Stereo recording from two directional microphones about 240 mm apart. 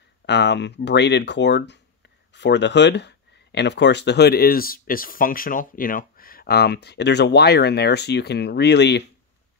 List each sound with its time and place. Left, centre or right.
0.3 s speech: left